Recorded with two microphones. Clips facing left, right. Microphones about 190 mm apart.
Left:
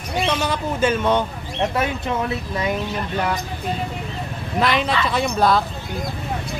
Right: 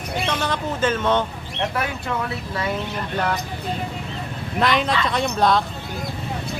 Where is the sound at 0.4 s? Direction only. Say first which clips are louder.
Left 2 dB; 10° left (ahead or behind).